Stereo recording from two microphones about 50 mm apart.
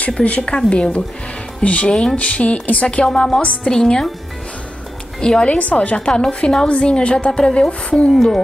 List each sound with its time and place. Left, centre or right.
0.2 s a woman's voice: left
3.1 s a woman's voice: centre
5.2 s a woman's voice: centre
8.1 s speech: centre